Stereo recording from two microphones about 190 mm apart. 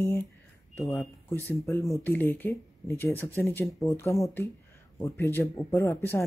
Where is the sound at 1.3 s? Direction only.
10° left (ahead or behind).